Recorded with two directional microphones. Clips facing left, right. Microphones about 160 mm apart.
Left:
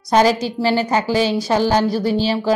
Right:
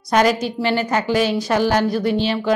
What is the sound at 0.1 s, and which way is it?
A woman's voice, 30° left (ahead or behind).